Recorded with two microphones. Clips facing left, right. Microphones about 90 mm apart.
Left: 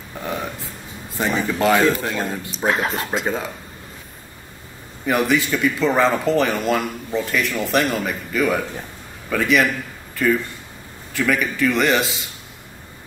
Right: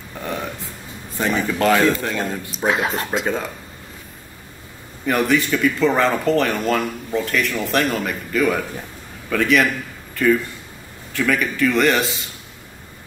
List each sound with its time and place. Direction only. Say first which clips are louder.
0.2 s burping: even; 5° left (ahead or behind)
1.1 s speech: right 1 dB; centre (ahead or behind)
5.0 s speech: even; centre (ahead or behind)